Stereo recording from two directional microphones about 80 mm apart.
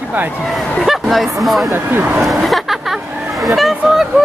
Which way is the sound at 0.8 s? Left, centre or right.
Centre.